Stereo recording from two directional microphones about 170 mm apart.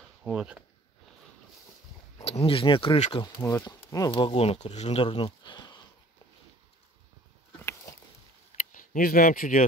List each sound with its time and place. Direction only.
0.2 s speech: 5° right (ahead or behind)
2.2 s speech: 35° left (ahead or behind)
4.1 s speech: 35° left (ahead or behind)
8.7 s speech: 55° left (ahead or behind)